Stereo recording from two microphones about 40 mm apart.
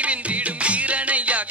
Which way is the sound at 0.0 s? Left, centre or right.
Right.